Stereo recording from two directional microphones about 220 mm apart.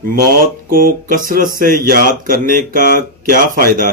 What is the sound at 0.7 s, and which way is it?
Speech, 40° right (ahead or behind).